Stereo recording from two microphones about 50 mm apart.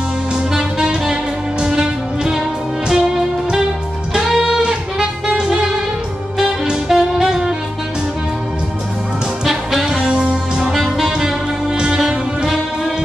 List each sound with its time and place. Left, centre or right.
0.5 s music: centre
9.4 s music: centre
10.6 s music: centre